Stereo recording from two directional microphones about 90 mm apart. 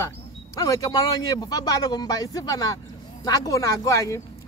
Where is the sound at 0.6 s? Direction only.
40° left (ahead or behind).